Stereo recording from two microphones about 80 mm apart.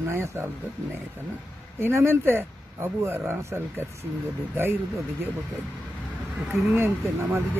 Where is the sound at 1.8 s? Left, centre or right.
Right.